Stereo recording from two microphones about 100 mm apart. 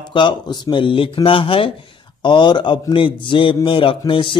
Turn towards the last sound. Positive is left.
turn(degrees=55)  # may be behind; listen again after turning